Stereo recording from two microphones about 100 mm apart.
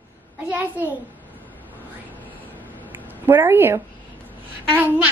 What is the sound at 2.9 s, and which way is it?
Speech, 20° right (ahead or behind).